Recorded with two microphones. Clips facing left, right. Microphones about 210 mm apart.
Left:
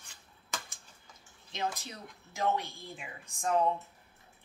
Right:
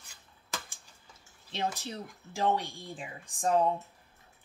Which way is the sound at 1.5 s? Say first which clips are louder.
Right 2 dB; 30° right (ahead or behind).